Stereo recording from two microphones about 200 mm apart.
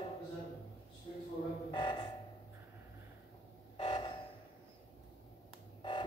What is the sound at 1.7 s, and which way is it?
Music, 25° left (ahead or behind).